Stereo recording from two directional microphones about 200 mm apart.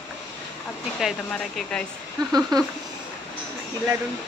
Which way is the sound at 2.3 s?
20° right (ahead or behind).